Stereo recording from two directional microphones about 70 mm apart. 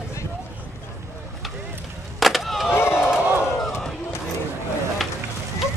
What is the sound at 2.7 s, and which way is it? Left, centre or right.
Crowd, left.